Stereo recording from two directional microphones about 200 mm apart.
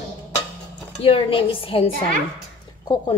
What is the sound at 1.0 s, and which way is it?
Speech, 25° left (ahead or behind).